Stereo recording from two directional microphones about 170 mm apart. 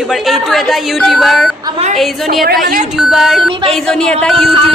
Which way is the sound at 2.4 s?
60° right (ahead or behind).